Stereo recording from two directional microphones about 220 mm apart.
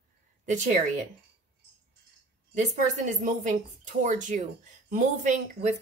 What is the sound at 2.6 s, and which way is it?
A woman's voice, 35° right (ahead or behind).